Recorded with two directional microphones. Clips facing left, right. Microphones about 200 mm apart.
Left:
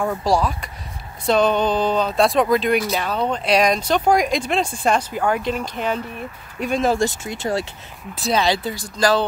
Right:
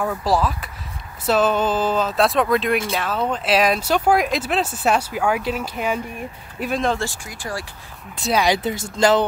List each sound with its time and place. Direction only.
0.0 s speech: centre (ahead or behind)
7.0 s speech: 20° left (ahead or behind)
8.2 s speech: 10° right (ahead or behind)